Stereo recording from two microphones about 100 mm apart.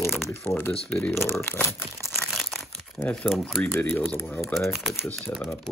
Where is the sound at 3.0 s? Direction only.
5° left (ahead or behind).